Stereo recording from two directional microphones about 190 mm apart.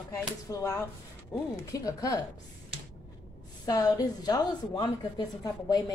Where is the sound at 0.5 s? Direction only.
15° left (ahead or behind).